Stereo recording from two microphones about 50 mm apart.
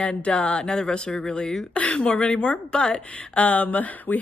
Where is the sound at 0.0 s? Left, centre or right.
Left.